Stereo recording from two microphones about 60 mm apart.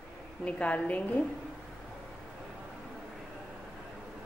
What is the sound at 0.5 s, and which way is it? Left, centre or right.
Speech, left.